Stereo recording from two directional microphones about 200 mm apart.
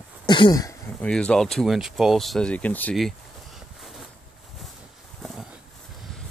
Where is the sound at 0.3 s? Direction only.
20° left (ahead or behind).